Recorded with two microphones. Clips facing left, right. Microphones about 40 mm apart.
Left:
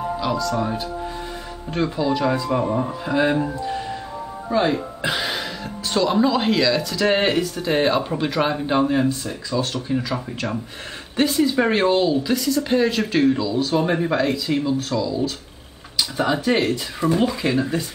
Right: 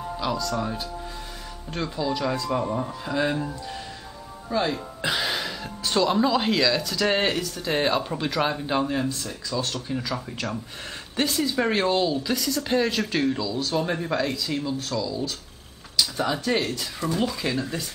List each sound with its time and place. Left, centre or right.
0.2 s speech: centre
5.0 s speech: centre